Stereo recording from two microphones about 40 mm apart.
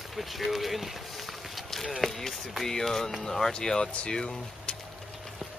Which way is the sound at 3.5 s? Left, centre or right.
Centre.